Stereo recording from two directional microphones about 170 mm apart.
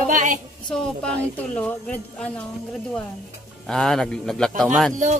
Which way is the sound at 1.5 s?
5° left (ahead or behind).